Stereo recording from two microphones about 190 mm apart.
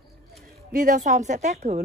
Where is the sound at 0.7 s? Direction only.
45° right (ahead or behind).